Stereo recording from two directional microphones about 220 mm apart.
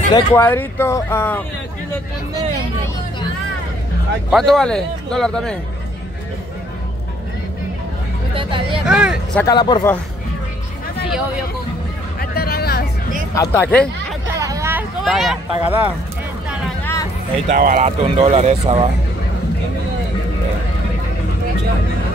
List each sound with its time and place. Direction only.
0.1 s speech: 10° left (ahead or behind)
4.3 s speech: centre (ahead or behind)
8.4 s a sound: 25° right (ahead or behind)
8.8 s speech: 5° right (ahead or behind)
9.4 s speech: 20° left (ahead or behind)
12.2 s hubbub: 45° left (ahead or behind)
13.3 s speech: 10° left (ahead or behind)
14.2 s speech: 15° right (ahead or behind)
16.8 s a sound: 15° left (ahead or behind)
17.5 s speech: 35° right (ahead or behind)